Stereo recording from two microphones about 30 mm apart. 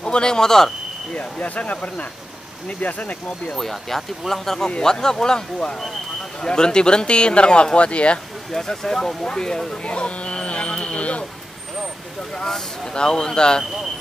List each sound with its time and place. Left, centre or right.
0.0 s a man's voice: left
1.1 s speech: left
2.8 s speech: left
3.5 s a man's voice: centre
6.4 s a man's voice: left
8.5 s a man's voice: centre
9.8 s livestock: left
12.4 s speech: centre
12.9 s a man's voice: left